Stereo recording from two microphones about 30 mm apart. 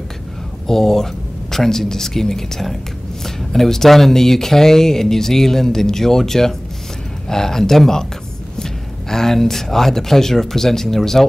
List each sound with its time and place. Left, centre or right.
0.7 s speech: centre